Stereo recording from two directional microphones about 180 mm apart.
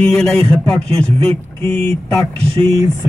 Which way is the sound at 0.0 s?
5° left (ahead or behind).